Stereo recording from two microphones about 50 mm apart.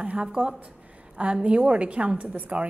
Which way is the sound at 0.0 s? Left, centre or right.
Right.